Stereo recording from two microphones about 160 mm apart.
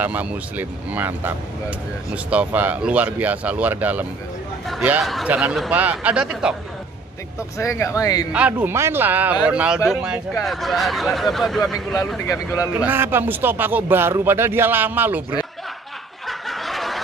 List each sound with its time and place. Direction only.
0.0 s speech: 10° right (ahead or behind)
7.5 s speech: 20° left (ahead or behind)
8.3 s speech: 10° right (ahead or behind)
12.2 s speech: 15° left (ahead or behind)
12.8 s speech: 15° right (ahead or behind)
16.3 s snicker: centre (ahead or behind)